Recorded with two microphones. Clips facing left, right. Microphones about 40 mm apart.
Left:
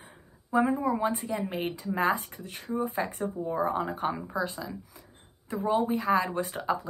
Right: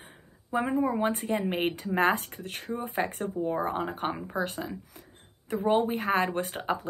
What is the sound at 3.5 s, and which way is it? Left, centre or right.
Speech, right.